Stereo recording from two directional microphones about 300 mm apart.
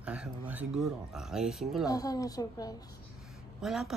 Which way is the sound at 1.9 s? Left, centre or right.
Centre.